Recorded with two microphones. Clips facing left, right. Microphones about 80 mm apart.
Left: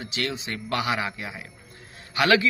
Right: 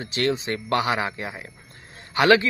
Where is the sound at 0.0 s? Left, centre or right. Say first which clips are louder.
Right 6 dB; right.